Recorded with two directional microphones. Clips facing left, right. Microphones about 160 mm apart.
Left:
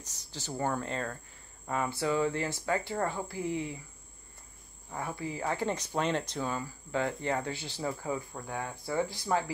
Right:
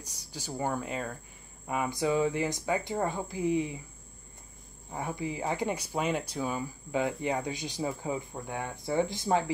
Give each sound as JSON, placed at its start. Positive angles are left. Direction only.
{"t": 0.0, "sound": "speech", "side_deg": -10}
{"t": 4.9, "sound": "speech", "side_deg": -20}